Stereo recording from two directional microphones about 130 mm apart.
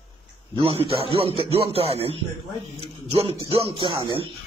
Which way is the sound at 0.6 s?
45° right (ahead or behind).